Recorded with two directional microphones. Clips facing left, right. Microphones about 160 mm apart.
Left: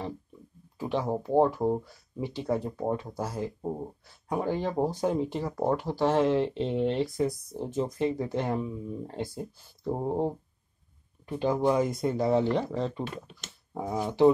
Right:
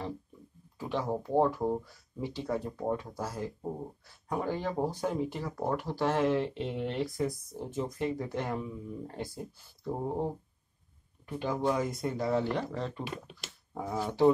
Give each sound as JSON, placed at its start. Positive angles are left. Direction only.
{"t": 0.7, "sound": "speech", "side_deg": 20}
{"t": 11.2, "sound": "speech", "side_deg": 25}